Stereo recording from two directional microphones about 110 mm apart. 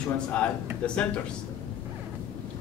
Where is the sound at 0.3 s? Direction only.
10° left (ahead or behind).